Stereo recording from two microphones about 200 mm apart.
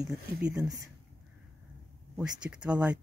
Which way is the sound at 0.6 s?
20° right (ahead or behind).